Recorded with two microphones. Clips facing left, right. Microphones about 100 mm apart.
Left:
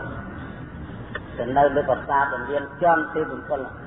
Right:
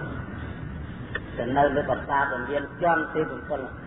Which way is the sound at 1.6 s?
50° left (ahead or behind).